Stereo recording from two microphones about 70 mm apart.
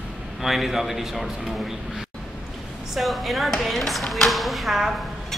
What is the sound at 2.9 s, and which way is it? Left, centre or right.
A man's voice, centre.